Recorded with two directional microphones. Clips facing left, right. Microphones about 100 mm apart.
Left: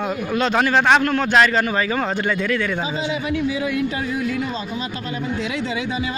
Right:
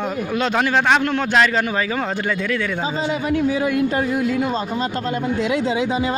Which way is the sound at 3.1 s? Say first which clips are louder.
Right 4 dB; 45° right (ahead or behind).